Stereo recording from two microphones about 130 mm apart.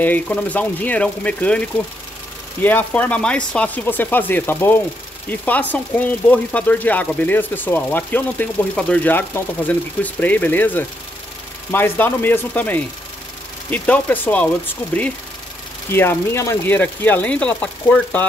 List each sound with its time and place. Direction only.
0.0 s speech: 10° left (ahead or behind)
15.9 s speech: 20° left (ahead or behind)